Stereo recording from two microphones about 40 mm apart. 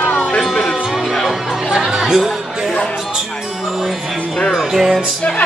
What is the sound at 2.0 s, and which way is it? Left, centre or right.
Speech, centre.